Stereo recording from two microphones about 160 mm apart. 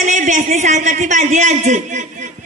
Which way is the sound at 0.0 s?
50° right (ahead or behind).